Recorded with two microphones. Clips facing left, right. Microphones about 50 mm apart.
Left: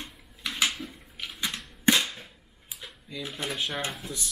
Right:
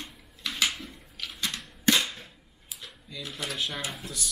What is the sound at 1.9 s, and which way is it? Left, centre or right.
Cap gun, centre.